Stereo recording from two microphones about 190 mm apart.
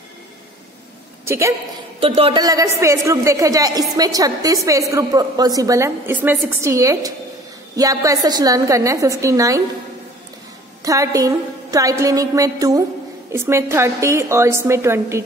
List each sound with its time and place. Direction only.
1.2 s a woman's voice: 15° right (ahead or behind)
2.0 s a woman's voice: 30° right (ahead or behind)
10.8 s a woman's voice: 15° right (ahead or behind)